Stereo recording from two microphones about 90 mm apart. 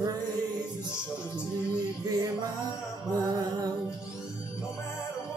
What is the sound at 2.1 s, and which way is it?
Music, 50° right (ahead or behind).